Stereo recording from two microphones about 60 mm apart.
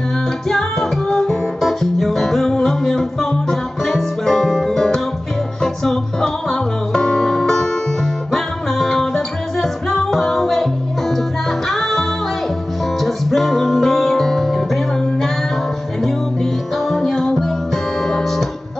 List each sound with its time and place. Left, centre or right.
0.5 s music: centre
16.9 s music: centre